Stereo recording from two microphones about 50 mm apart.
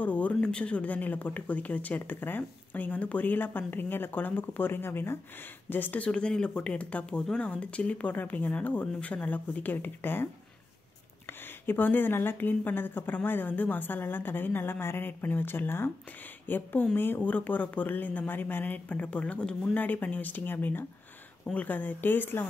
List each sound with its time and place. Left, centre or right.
0.0 s a sound: left
0.4 s speech: centre; by 5.2 s left
5.7 s speech: left
5.9 s speech: centre; by 10.2 s left
11.6 s speech: left